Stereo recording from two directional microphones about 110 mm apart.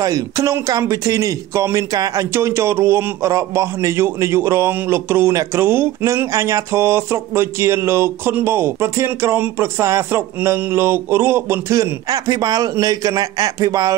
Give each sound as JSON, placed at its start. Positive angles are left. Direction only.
{"t": 0.0, "sound": "speech", "side_deg": -30}